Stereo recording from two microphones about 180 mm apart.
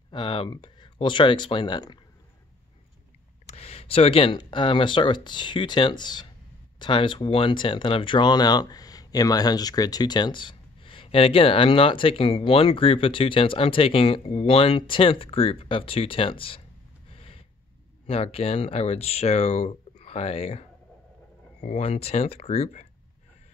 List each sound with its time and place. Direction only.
0.1 s speech: 30° left (ahead or behind)
3.5 s speech: 35° left (ahead or behind)
17.1 s a sound: 35° left (ahead or behind)
18.0 s speech: 35° left (ahead or behind)
21.6 s speech: 35° left (ahead or behind)